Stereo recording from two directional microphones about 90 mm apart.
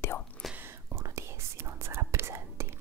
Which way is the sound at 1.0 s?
30° right (ahead or behind).